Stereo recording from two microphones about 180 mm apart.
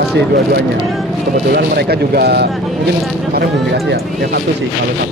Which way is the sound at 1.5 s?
60° right (ahead or behind).